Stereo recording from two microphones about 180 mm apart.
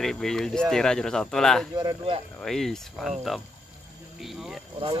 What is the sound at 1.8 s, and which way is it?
Speech, 25° right (ahead or behind).